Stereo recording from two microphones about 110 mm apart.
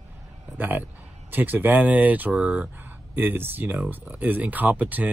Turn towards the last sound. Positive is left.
turn(degrees=-15)  # may be behind; listen again after turning